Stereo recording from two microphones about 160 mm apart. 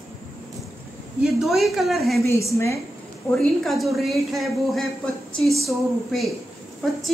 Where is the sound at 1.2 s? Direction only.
Centre (ahead or behind).